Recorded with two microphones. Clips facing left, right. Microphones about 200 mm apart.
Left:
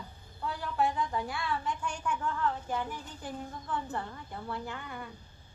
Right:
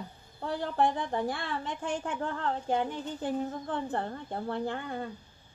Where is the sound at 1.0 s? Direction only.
55° right (ahead or behind).